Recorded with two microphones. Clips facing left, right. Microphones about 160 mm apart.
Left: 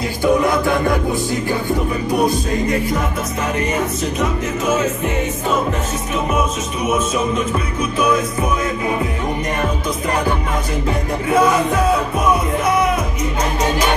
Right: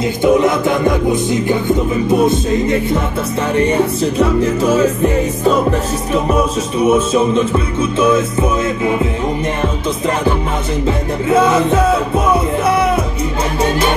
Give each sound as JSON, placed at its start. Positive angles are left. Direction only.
{"t": 0.2, "sound": "music", "side_deg": -20}
{"t": 6.1, "sound": "music", "side_deg": -30}
{"t": 11.2, "sound": "music", "side_deg": -25}